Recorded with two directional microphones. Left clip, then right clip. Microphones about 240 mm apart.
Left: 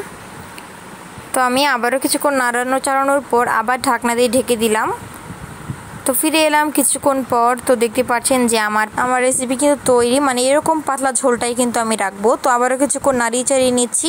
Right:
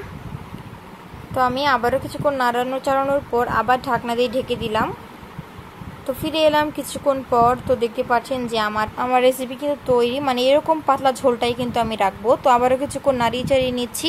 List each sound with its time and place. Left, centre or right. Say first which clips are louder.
1.3 s a woman's voice: left 3 dB; left
6.0 s a woman's voice: left 3 dB; left